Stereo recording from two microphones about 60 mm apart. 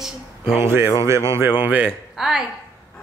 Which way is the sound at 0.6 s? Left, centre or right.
Right.